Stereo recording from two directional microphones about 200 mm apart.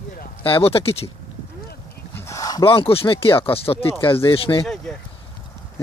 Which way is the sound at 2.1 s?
15° left (ahead or behind).